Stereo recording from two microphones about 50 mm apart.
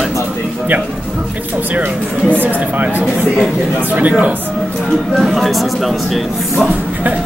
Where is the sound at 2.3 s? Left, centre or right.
Right.